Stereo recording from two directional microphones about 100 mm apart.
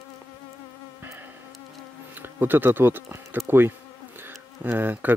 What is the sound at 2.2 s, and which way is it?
Speech, 20° right (ahead or behind).